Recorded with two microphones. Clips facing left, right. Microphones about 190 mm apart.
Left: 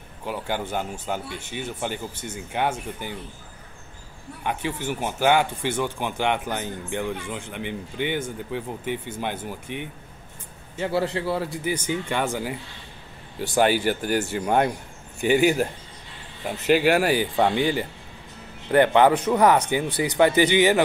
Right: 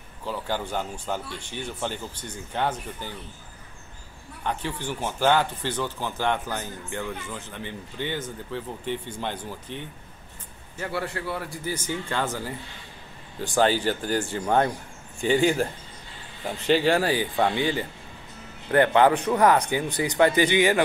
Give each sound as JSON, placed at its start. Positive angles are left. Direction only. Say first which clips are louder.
{"t": 0.2, "sound": "speech", "louder": "left 1 dB", "side_deg": 15}
{"t": 4.4, "sound": "speech", "louder": "left 2 dB", "side_deg": 10}
{"t": 10.9, "sound": "speech", "louder": "left 6 dB", "side_deg": 25}